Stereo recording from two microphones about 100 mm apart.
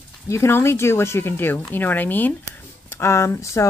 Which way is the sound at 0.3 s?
25° left (ahead or behind).